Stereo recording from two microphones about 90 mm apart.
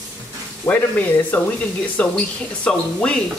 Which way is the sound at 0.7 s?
20° left (ahead or behind).